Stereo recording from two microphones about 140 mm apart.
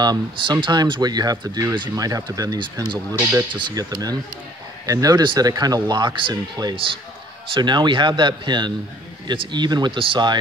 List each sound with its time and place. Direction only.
0.0 s speech: 30° right (ahead or behind)